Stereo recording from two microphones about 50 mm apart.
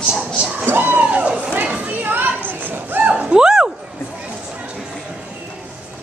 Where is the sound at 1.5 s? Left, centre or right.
Right.